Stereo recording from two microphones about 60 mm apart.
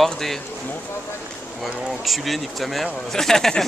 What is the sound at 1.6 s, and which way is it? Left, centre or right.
Speech, centre.